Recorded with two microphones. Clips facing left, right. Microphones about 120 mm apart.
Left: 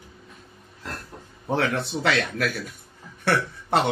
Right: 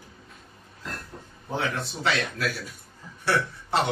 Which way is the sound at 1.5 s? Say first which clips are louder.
Left 5 dB; 70° left (ahead or behind).